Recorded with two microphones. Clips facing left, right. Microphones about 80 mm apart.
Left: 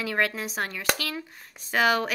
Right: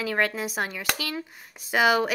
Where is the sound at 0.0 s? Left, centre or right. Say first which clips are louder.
Right 1 dB; centre.